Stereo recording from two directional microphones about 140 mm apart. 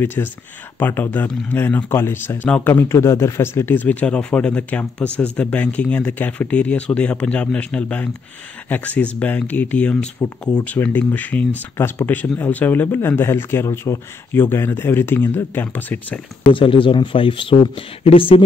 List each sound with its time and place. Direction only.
0.0 s speech: 15° left (ahead or behind)
16.4 s speech: 35° left (ahead or behind)